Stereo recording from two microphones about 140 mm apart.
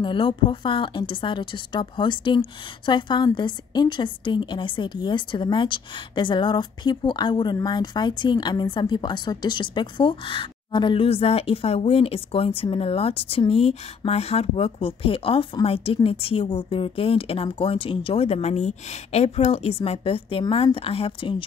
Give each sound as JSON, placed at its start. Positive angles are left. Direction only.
{"t": 0.0, "sound": "speech", "side_deg": 35}